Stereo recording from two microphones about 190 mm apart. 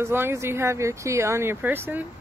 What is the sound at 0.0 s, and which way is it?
Speech, 10° right (ahead or behind).